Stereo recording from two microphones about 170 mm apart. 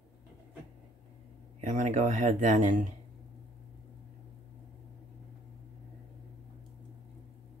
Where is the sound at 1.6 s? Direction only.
45° right (ahead or behind).